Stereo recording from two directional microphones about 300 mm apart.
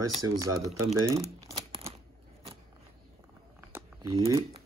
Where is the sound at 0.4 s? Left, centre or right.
Centre.